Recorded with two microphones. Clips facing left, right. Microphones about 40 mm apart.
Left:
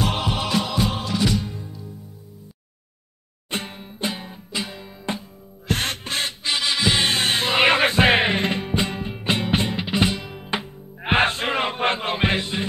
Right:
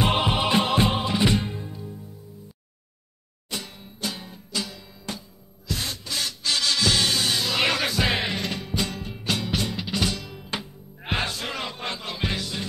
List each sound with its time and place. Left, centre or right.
0.0 s music: right
0.7 s music: right
0.9 s music: right
1.6 s music: centre
3.4 s music: left
5.7 s music: left
6.4 s music: left